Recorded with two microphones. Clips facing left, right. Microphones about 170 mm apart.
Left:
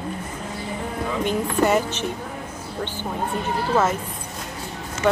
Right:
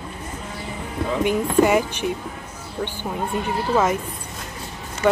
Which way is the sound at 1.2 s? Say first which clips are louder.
Right 4 dB; 10° right (ahead or behind).